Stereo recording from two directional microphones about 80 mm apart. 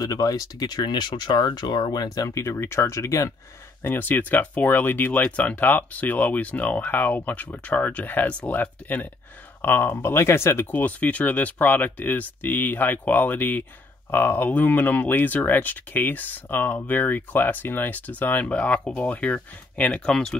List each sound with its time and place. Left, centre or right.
0.0 s speech: left
3.8 s speech: left; by 20.3 s centre